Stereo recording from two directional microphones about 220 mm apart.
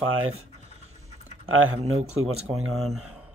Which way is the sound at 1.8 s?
30° right (ahead or behind).